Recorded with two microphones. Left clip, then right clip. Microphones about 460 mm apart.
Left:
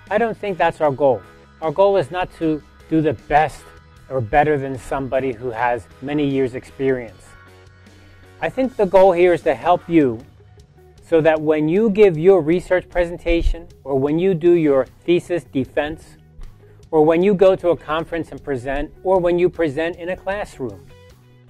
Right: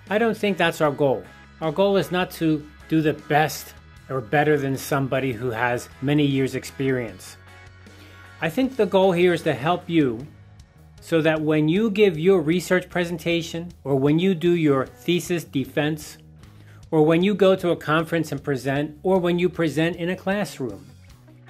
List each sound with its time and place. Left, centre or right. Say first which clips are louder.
0.1 s speech: left 2 dB; left
8.4 s speech: left 3 dB; left